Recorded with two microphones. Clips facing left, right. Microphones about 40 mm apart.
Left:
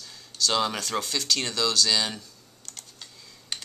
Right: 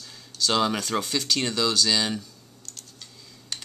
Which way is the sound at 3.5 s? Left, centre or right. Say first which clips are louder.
Even; left.